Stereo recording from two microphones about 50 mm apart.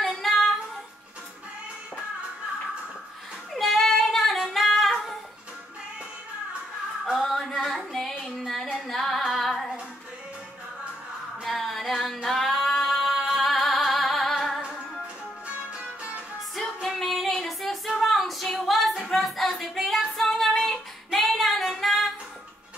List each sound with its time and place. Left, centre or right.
0.0 s child singing: centre
3.5 s child singing: centre
7.2 s a sound: centre
8.8 s female singing: centre
11.4 s female singing: centre
12.3 s singing: centre
12.7 s music: centre
15.4 s music: right
16.8 s music: centre